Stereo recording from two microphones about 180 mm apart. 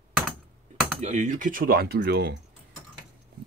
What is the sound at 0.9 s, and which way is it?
Speech, 40° right (ahead or behind).